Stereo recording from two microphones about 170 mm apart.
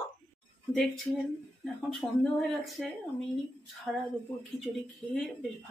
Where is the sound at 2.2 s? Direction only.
Centre (ahead or behind).